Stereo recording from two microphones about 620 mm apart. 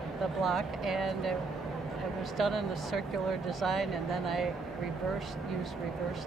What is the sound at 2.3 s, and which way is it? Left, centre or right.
Speech, centre.